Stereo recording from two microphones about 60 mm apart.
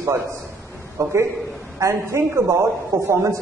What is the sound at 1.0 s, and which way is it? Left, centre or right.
Speech, right.